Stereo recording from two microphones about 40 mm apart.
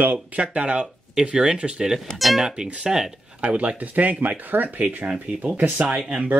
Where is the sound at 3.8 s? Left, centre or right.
Right.